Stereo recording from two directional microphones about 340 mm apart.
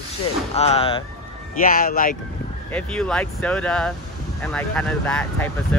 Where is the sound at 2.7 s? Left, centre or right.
Centre.